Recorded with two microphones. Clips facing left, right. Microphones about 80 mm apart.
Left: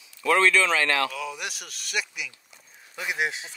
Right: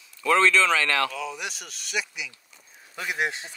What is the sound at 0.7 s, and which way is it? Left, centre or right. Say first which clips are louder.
Speech: even; centre.